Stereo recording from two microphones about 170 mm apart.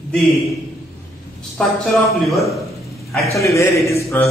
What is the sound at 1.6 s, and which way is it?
Speech, 5° left (ahead or behind).